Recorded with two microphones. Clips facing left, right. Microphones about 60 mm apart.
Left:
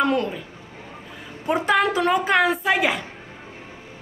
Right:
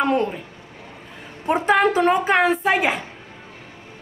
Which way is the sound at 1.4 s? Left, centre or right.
Right.